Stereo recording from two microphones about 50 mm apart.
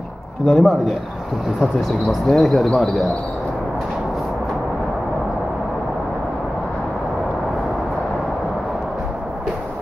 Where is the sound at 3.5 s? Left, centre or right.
Centre.